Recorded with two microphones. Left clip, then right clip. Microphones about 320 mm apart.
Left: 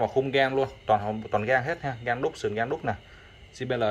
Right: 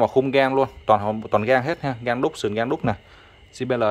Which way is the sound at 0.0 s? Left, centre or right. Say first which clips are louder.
Right 6 dB; centre.